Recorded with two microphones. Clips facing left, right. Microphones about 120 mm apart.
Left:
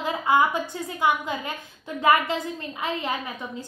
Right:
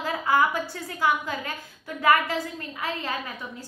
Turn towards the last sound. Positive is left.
turn(degrees=20)  # may be behind; listen again after turning